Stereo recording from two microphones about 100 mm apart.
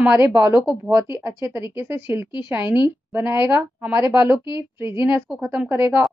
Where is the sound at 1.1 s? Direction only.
25° right (ahead or behind).